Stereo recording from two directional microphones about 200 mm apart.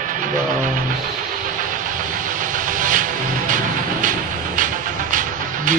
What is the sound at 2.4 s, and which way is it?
Vehicle, 40° right (ahead or behind).